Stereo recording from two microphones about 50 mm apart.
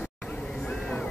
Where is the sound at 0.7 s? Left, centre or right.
Centre.